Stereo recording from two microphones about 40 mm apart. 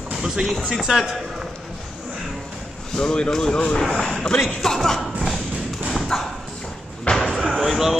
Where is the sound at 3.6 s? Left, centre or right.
Left.